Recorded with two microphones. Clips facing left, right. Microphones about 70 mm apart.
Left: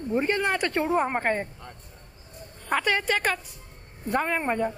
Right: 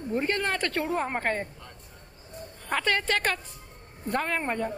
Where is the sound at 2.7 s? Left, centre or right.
Centre.